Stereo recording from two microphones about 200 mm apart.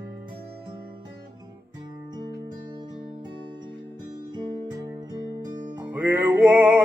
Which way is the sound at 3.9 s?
20° right (ahead or behind).